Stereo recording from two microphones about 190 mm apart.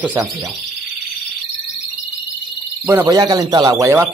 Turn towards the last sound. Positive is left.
turn(degrees=-15)  # may be behind; listen again after turning